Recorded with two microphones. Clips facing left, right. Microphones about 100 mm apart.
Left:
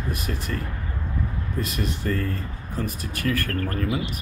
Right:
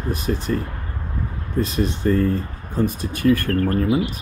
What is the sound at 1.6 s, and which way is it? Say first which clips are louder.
Speech: right 8 dB; 25° right (ahead or behind).